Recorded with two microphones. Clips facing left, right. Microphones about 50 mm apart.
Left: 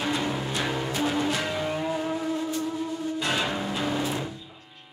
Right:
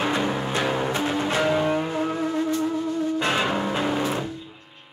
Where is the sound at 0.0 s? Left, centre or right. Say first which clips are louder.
Right 4 dB; right.